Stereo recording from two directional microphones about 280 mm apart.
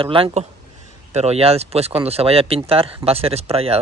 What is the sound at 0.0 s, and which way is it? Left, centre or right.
Speech, centre.